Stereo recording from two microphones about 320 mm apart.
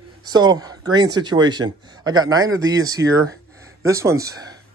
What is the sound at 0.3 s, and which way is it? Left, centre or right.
Speech, centre.